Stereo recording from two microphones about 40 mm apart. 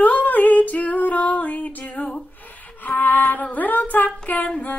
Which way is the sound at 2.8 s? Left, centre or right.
Left.